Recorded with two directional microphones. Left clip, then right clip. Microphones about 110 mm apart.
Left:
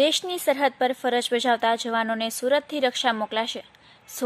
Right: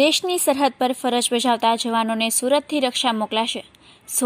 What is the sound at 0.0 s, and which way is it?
A woman's voice, 15° right (ahead or behind).